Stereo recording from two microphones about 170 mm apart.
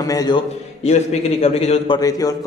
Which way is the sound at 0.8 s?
40° left (ahead or behind).